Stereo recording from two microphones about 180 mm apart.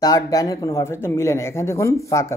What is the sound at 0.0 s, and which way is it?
Speech, 20° left (ahead or behind).